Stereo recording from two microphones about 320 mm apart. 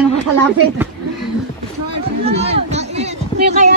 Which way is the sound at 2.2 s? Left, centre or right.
Centre.